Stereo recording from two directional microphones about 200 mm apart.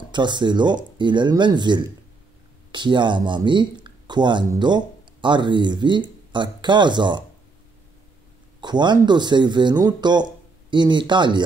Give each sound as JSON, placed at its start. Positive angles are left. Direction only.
{"t": 0.1, "sound": "speech", "side_deg": -20}
{"t": 8.5, "sound": "speech", "side_deg": -20}